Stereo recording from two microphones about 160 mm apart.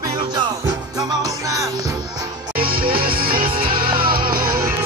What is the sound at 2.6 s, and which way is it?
Music, 70° right (ahead or behind).